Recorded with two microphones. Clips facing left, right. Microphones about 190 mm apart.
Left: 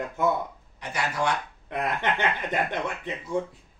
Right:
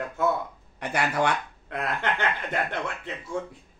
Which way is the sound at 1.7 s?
15° left (ahead or behind).